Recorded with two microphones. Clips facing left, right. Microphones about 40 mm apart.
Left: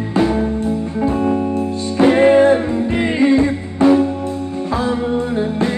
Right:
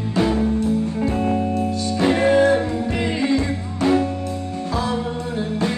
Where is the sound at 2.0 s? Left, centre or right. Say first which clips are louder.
Left 6 dB; left.